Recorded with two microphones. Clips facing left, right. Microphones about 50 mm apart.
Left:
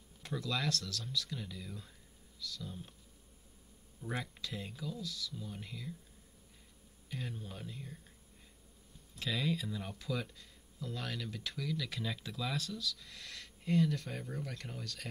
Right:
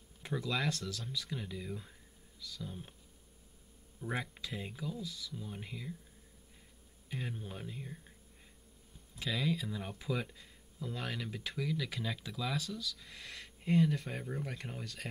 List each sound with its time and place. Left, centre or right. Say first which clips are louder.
0.2 s speech: right 2 dB; centre
4.0 s speech: right 2 dB; centre
7.1 s speech: right 2 dB; centre
9.1 s speech: right 1 dB; centre